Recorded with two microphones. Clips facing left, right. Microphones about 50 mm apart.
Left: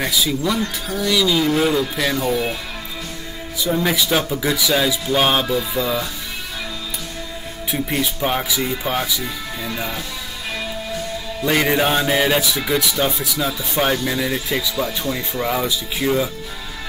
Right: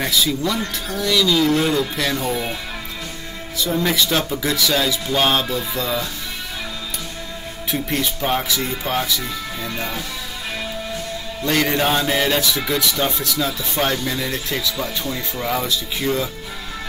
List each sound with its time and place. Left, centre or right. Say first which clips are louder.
0.0 s a man's voice: even; centre
3.5 s a man's voice: even; centre
7.7 s a man's voice: left 1 dB; centre
11.4 s a man's voice: left 1 dB; centre